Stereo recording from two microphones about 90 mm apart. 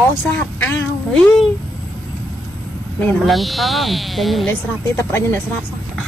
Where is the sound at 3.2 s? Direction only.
Centre (ahead or behind).